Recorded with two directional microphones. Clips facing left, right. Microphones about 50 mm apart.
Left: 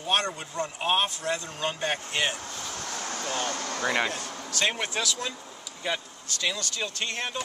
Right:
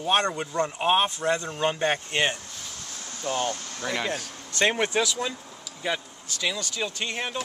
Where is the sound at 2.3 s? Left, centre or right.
Left.